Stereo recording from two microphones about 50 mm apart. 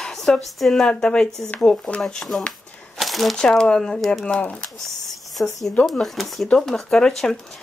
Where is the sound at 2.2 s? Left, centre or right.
Left.